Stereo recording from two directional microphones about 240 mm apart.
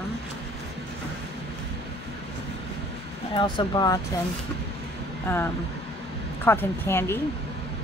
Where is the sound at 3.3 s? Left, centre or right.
Centre.